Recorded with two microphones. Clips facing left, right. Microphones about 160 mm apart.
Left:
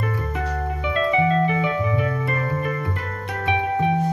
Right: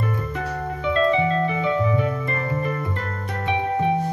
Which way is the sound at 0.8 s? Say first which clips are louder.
Right 1 dB; 15° left (ahead or behind).